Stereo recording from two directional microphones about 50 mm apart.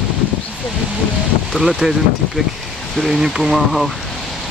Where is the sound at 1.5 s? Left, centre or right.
Centre.